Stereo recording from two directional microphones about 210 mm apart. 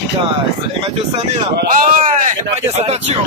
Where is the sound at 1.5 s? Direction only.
40° right (ahead or behind).